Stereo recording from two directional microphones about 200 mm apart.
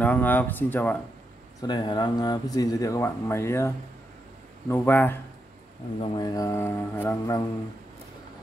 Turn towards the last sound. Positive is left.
turn(degrees=10)  # may be behind; listen again after turning